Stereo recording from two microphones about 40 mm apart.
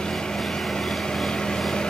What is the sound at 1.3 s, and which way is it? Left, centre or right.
Vehicle, centre.